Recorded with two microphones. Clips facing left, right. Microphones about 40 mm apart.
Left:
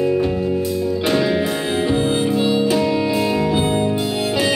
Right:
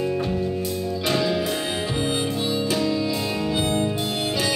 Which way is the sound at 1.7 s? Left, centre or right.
Centre.